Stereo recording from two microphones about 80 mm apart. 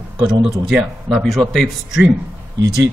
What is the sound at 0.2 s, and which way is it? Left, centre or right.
A man's voice, centre.